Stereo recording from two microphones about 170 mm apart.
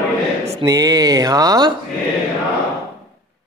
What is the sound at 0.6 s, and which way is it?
Speech, 20° right (ahead or behind).